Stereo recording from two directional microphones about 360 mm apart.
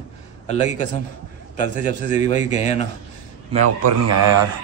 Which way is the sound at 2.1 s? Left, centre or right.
Centre.